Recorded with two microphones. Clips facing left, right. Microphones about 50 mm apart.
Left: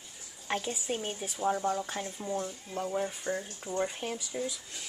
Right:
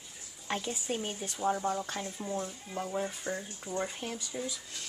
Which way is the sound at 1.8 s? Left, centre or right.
Centre.